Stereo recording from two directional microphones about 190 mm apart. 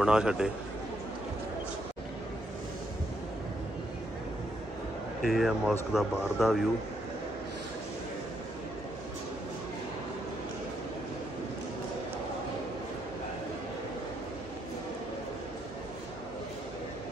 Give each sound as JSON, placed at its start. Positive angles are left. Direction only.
{"t": 0.0, "sound": "speech", "side_deg": -5}
{"t": 5.2, "sound": "speech", "side_deg": 0}